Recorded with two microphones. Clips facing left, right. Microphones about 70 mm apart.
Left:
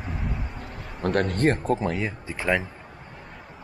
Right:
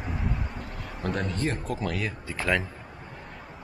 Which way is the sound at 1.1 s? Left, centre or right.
Left.